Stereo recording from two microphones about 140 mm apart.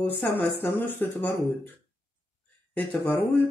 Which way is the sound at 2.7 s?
10° left (ahead or behind).